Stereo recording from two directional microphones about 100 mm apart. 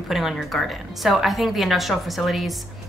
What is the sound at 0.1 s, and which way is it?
Speech, 5° right (ahead or behind).